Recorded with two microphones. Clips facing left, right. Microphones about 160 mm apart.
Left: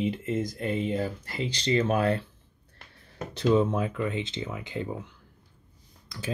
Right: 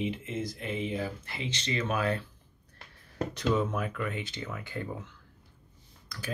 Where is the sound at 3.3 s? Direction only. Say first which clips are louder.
Left 6 dB; 30° left (ahead or behind).